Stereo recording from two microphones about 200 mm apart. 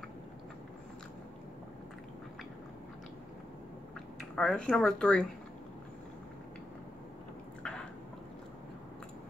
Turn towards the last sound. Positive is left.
turn(degrees=5)  # may be behind; listen again after turning